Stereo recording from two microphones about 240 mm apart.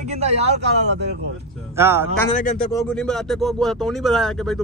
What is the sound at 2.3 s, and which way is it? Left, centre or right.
Speech, left.